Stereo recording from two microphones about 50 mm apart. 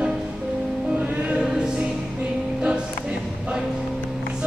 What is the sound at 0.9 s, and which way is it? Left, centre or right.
Music, right.